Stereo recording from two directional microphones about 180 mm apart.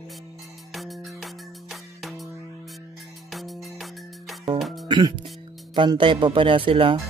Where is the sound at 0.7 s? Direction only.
Centre (ahead or behind).